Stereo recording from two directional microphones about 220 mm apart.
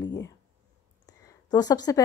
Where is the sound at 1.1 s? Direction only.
15° left (ahead or behind).